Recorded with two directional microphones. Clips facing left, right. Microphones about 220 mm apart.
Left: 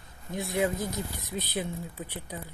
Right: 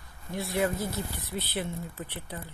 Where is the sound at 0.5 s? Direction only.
15° left (ahead or behind).